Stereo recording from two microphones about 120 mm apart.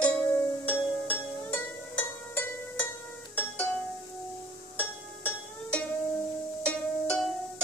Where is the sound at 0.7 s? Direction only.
15° left (ahead or behind).